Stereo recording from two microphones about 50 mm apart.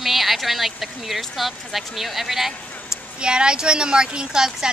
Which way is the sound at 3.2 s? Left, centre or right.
Centre.